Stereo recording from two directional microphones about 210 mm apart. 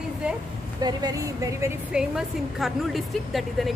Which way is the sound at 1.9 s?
5° right (ahead or behind).